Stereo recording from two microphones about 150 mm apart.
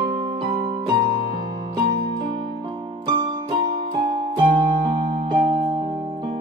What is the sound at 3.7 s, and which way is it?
Music, 30° right (ahead or behind).